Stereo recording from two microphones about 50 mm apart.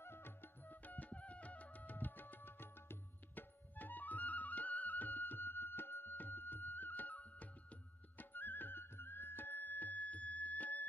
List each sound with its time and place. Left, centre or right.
0.0 s music: left